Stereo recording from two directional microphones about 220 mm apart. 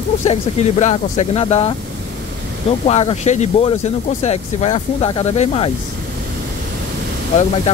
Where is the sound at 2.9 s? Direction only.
30° left (ahead or behind).